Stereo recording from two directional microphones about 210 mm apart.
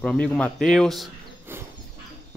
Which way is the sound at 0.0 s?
5° left (ahead or behind).